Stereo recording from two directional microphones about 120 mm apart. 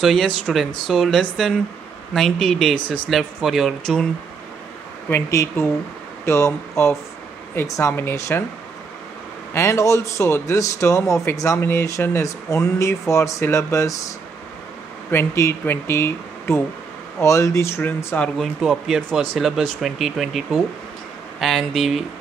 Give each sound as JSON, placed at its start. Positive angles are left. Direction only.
{"t": 0.0, "sound": "speech", "side_deg": 0}
{"t": 5.1, "sound": "speech", "side_deg": 20}
{"t": 9.5, "sound": "speech", "side_deg": 25}
{"t": 15.0, "sound": "speech", "side_deg": 20}
{"t": 18.4, "sound": "speech", "side_deg": 0}